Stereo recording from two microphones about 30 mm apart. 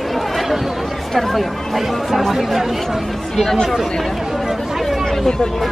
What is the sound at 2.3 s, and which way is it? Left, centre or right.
Chatter, centre.